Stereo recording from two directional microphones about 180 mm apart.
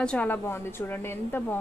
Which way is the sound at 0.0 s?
5° left (ahead or behind).